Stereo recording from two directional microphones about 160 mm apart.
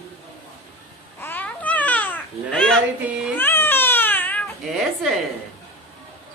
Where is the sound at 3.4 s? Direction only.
15° left (ahead or behind).